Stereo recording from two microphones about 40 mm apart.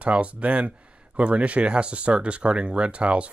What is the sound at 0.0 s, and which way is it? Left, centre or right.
Speech, right.